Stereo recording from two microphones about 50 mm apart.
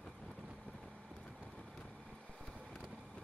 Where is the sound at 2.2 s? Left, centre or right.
Centre.